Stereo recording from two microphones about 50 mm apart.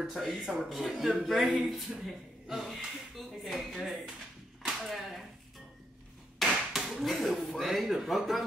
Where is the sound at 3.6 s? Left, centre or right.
Centre.